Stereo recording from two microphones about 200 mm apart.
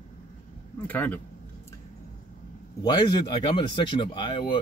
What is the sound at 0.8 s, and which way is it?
Speech, 10° left (ahead or behind).